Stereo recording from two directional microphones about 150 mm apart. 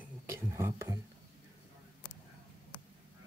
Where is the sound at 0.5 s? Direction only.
20° right (ahead or behind).